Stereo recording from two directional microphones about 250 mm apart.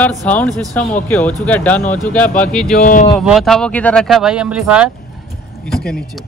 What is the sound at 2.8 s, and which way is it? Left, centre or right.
Speech, left.